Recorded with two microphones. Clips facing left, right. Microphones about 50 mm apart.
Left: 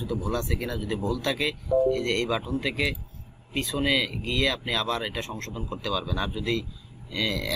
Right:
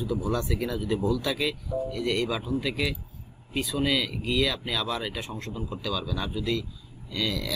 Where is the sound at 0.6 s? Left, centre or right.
Centre.